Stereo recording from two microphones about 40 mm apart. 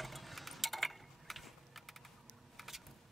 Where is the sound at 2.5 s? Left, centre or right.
Centre.